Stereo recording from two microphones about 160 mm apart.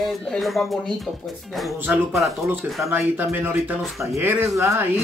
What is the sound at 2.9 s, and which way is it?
Speech, 10° right (ahead or behind).